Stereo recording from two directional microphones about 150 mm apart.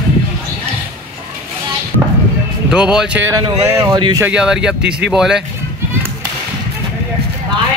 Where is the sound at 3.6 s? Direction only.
20° right (ahead or behind).